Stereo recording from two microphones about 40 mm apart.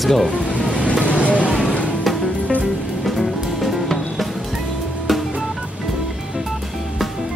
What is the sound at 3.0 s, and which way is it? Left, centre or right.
Drum kit, centre.